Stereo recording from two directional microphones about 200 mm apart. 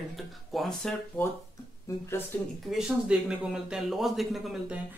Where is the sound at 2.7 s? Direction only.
5° right (ahead or behind).